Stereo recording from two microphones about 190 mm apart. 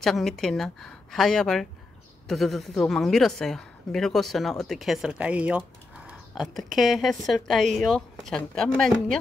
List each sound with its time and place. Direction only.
0.0 s a woman's voice: centre (ahead or behind)